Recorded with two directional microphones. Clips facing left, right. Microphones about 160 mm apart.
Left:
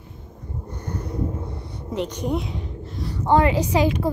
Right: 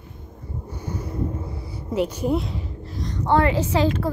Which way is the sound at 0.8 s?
5° right (ahead or behind).